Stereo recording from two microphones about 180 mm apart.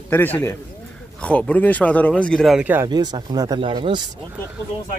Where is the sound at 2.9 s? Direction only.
25° right (ahead or behind).